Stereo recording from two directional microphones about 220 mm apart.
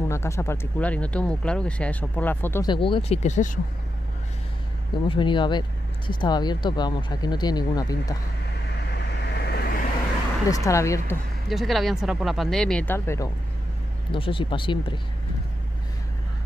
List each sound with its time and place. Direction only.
0.1 s speech: 10° left (ahead or behind)
2.7 s speech: 25° left (ahead or behind)
5.0 s speech: 20° left (ahead or behind)
8.9 s vehicle: 50° left (ahead or behind)
10.5 s speech: 15° left (ahead or behind)
11.4 s speech: centre (ahead or behind)
14.1 s speech: 25° left (ahead or behind)